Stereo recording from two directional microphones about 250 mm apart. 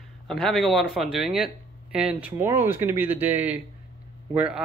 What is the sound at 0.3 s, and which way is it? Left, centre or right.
Speech, centre.